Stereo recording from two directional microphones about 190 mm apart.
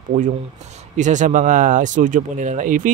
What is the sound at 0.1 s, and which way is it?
Speech, 40° right (ahead or behind).